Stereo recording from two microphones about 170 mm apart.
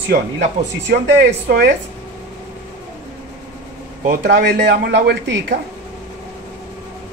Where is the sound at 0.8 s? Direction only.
80° right.